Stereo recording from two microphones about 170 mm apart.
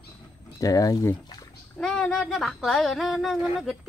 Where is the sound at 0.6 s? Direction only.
20° left (ahead or behind).